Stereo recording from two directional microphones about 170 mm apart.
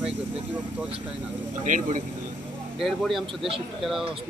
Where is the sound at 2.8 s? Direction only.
Centre (ahead or behind).